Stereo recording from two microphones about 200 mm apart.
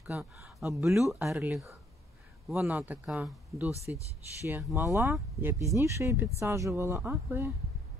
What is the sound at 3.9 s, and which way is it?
Speech, 15° left (ahead or behind).